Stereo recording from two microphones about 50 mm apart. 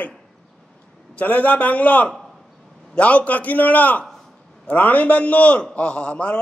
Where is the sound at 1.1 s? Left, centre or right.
Left.